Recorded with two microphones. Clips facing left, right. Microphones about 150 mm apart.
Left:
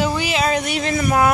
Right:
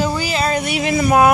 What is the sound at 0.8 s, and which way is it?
Speech, 15° right (ahead or behind).